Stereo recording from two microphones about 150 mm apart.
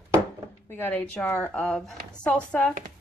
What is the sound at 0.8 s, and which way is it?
A woman's voice, 10° left (ahead or behind).